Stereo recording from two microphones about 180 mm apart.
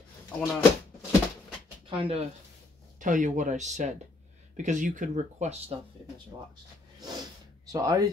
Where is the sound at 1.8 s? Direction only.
30° right (ahead or behind).